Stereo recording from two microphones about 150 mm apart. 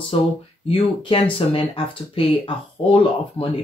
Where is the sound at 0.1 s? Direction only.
35° left (ahead or behind).